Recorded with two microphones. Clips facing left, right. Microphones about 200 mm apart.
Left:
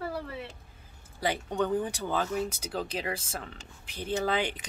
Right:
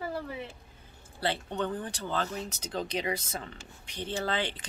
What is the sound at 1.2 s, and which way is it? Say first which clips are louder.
A woman's voice: left 2 dB; 10° left (ahead or behind).